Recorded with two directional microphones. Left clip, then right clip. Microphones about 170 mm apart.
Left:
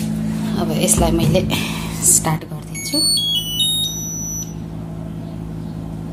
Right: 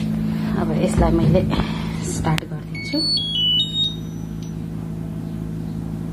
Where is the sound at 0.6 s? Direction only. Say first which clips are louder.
Left 2 dB; 20° left (ahead or behind).